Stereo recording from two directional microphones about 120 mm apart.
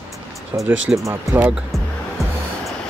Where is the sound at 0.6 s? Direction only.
25° right (ahead or behind).